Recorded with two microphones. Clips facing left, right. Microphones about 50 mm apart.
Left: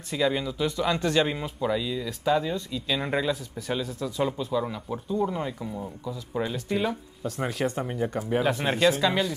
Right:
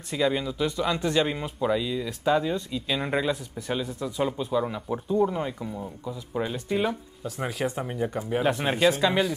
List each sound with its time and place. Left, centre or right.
0.1 s speech: centre
0.9 s a man's voice: centre
1.4 s speech: centre
3.0 s speech: centre
3.6 s speech: centre
4.9 s a man's voice: right
5.2 s speech: centre